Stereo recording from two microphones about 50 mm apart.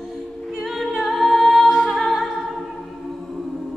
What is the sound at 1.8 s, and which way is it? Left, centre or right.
Music, centre.